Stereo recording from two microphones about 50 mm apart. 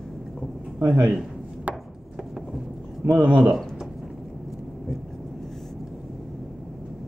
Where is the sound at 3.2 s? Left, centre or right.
Right.